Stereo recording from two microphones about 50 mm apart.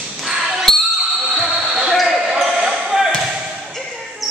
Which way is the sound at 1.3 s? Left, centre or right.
Centre.